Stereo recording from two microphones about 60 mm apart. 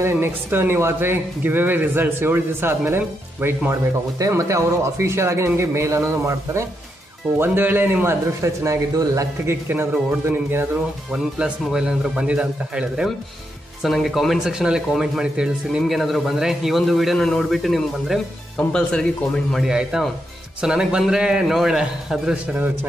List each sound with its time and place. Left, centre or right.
0.1 s speech: right
4.4 s a man's voice: right
7.3 s speech: right
8.4 s speech: right
9.5 s speech: right
11.1 s speech: centre
13.8 s speech: centre
15.8 s a man's voice: centre
18.7 s speech: centre
19.7 s speech: centre